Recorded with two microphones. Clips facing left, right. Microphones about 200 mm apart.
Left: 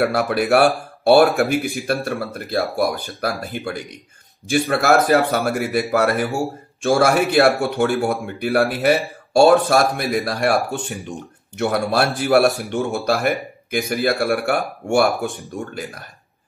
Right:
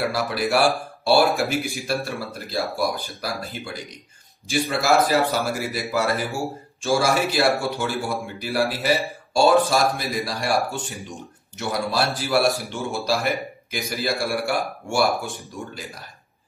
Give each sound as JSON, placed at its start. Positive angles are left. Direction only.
{"t": 0.0, "sound": "a man's voice", "side_deg": 55}